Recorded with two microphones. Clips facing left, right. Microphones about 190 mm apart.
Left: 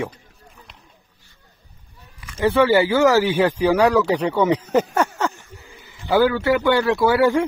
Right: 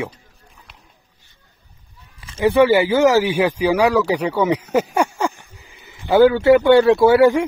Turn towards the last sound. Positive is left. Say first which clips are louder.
# right 4 dB
turn(degrees=-15)  # may be behind; listen again after turning